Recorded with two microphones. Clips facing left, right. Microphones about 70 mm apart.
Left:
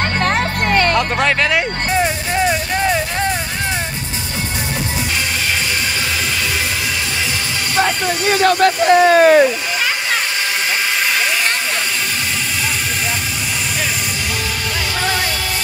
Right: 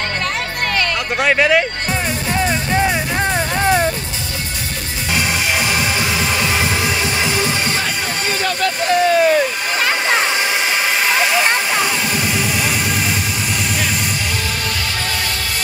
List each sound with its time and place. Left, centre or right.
0.7 s music: left
1.2 s speech: centre
2.7 s music: centre
7.8 s vehicle: left